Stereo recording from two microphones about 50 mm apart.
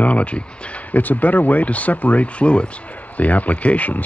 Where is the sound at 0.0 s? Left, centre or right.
Left.